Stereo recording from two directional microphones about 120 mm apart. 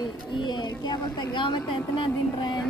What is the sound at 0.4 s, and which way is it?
Speech, 40° left (ahead or behind).